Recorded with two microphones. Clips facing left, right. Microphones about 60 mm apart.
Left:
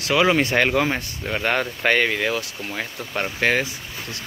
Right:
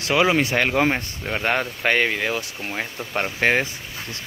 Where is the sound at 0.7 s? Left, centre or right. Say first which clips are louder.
Right 1 dB; centre.